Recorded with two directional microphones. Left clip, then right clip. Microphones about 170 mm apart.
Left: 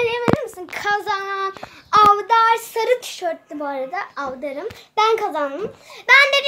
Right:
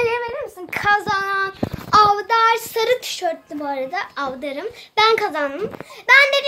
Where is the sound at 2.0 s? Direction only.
5° left (ahead or behind).